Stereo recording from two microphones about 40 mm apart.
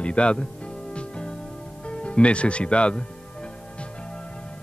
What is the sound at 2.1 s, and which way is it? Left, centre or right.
Speech, left.